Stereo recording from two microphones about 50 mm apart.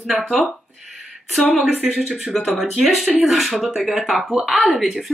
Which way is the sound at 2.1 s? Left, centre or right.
Centre.